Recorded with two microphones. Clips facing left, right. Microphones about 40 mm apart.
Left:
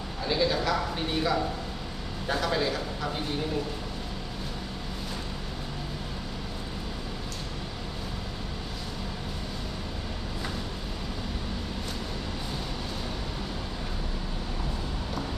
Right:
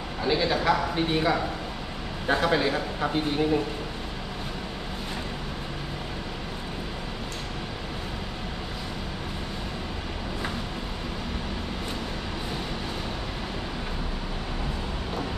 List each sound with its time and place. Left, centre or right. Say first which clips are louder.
0.2 s speech: right 2 dB; right